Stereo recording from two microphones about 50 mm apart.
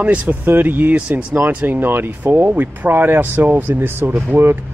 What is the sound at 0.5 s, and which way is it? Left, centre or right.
Speech, right.